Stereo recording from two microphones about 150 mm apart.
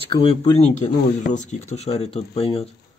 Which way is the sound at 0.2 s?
35° left (ahead or behind).